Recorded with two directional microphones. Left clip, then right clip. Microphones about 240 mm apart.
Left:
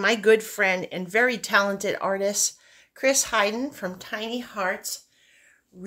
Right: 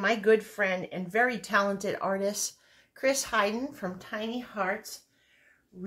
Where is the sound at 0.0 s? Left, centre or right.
Left.